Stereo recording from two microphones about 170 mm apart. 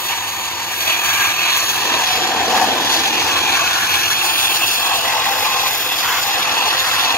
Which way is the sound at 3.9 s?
60° left (ahead or behind).